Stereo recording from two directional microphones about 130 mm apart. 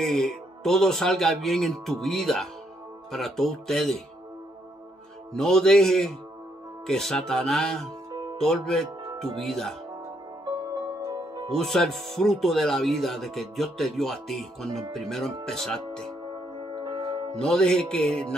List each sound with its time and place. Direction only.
0.0 s speech: 5° left (ahead or behind)
5.3 s speech: 5° left (ahead or behind)
11.0 s music: 30° right (ahead or behind)
11.5 s speech: 5° left (ahead or behind)
17.4 s speech: 5° left (ahead or behind)